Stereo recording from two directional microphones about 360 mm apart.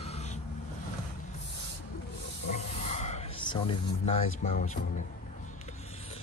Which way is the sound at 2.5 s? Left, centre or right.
Centre.